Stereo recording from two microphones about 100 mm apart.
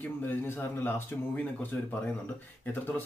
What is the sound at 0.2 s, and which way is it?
Speech, 20° left (ahead or behind).